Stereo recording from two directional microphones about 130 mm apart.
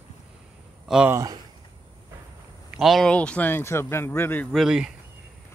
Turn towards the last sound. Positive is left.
turn(degrees=-5)  # may be behind; listen again after turning